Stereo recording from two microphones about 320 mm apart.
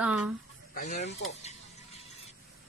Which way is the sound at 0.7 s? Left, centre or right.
Left.